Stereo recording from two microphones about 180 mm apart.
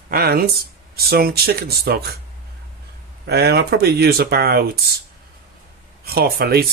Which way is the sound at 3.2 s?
65° right (ahead or behind).